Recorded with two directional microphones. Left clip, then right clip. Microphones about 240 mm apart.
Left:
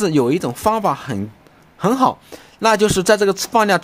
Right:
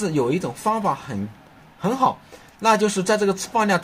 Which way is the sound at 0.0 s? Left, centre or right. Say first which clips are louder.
Left 5 dB; left.